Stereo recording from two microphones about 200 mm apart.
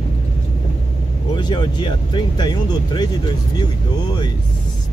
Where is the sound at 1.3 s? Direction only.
20° left (ahead or behind).